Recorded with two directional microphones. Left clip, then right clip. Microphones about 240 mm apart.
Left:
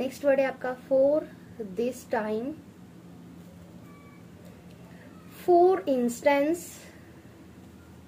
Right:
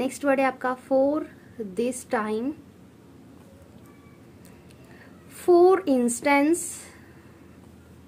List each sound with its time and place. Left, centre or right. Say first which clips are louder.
0.0 s speech: right 1 dB; right
5.4 s speech: right 3 dB; right